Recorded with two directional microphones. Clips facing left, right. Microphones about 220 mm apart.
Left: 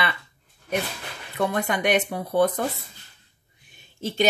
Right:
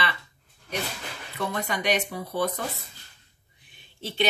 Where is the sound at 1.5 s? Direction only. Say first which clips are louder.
Left 3 dB; 50° left (ahead or behind).